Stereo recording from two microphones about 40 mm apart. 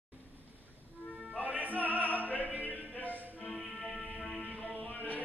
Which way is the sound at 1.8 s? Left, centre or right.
Left.